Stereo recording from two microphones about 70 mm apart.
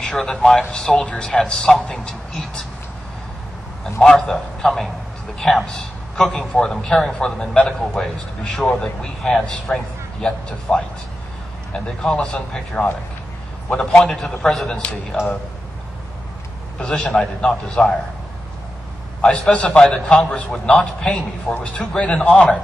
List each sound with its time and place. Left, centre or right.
0.0 s a man's voice: centre
4.0 s a man's voice: centre
16.7 s a man's voice: centre
19.2 s a man's voice: centre